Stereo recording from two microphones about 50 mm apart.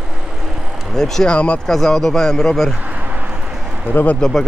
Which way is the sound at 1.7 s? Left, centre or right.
Centre.